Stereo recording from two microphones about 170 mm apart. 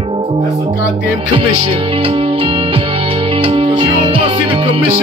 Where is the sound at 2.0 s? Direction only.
30° right (ahead or behind).